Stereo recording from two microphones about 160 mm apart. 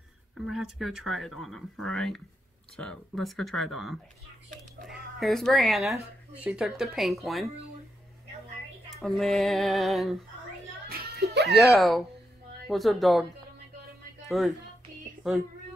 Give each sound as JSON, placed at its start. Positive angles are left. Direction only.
{"t": 0.5, "sound": "speech", "side_deg": 0}
{"t": 9.0, "sound": "speech", "side_deg": 0}
{"t": 10.9, "sound": "music", "side_deg": -75}
{"t": 11.7, "sound": "speech", "side_deg": 0}